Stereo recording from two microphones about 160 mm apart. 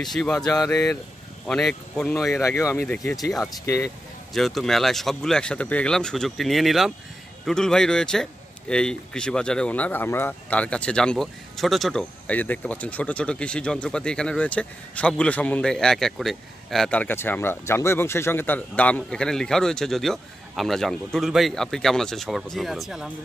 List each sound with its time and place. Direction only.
0.0 s a man's voice: centre (ahead or behind)
2.3 s speech: 15° left (ahead or behind)
3.0 s a man's voice: centre (ahead or behind)
3.6 s speech: 15° left (ahead or behind)
4.3 s a man's voice: centre (ahead or behind)